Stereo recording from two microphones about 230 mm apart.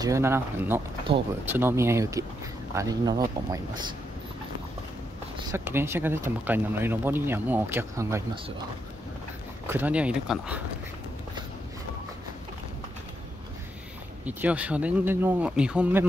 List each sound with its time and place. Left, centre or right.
0.0 s speech: centre
5.5 s speech: centre
9.7 s speech: centre
14.2 s speech: centre